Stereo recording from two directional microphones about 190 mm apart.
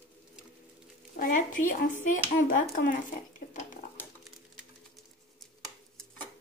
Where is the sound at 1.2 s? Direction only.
45° left (ahead or behind).